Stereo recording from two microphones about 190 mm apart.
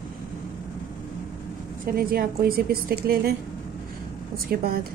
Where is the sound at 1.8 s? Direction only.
50° right (ahead or behind).